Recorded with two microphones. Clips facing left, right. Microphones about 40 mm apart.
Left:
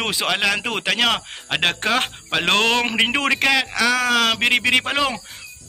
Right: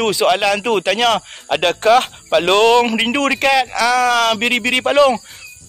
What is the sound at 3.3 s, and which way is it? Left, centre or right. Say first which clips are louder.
A man's voice: right 4 dB; centre.